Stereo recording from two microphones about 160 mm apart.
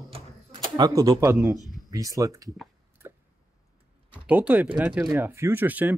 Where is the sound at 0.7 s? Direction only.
25° right (ahead or behind).